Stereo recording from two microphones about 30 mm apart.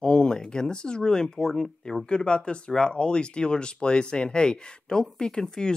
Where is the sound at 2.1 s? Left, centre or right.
Left.